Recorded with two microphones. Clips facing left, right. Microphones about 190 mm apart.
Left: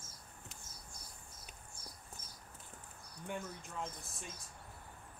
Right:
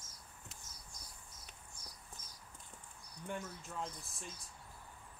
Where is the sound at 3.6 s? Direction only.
Centre (ahead or behind).